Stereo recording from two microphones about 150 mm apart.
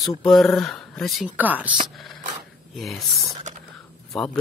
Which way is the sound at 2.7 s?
Centre (ahead or behind).